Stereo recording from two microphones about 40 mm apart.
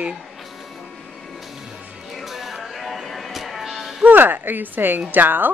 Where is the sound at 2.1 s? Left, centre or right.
Centre.